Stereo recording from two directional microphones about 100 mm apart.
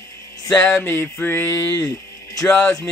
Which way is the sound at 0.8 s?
20° left (ahead or behind).